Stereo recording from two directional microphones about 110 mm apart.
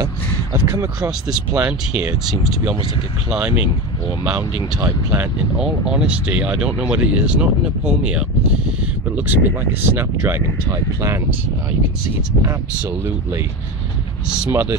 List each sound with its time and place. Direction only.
0.0 s a sound: 30° right (ahead or behind)
3.3 s speech: 10° right (ahead or behind)
4.8 s speech: 20° right (ahead or behind)
5.6 s speech: 5° right (ahead or behind); by 11.1 s 25° right (ahead or behind)
14.5 s speech: 25° right (ahead or behind)